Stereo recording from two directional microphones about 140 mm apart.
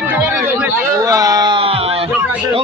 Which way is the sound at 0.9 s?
25° right (ahead or behind).